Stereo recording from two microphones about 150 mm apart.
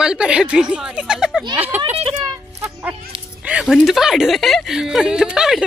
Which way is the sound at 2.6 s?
10° right (ahead or behind).